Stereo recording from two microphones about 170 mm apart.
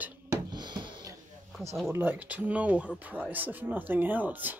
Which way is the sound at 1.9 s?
10° right (ahead or behind).